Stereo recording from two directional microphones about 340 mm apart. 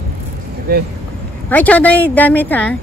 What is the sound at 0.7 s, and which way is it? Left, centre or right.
Speech, right.